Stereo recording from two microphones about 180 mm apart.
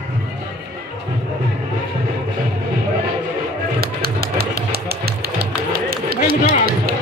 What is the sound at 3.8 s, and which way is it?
Music, 60° right (ahead or behind).